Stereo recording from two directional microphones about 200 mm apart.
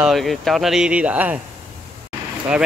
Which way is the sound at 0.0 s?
Centre (ahead or behind).